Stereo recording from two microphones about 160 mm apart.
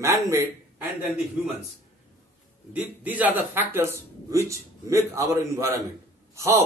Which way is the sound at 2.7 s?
10° right (ahead or behind).